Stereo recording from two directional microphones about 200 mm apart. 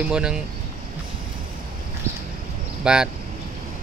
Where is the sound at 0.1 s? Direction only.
5° right (ahead or behind).